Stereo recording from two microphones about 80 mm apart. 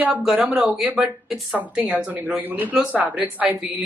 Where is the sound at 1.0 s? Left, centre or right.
Centre.